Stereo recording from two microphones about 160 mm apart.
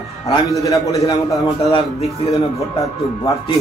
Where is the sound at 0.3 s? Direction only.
20° left (ahead or behind).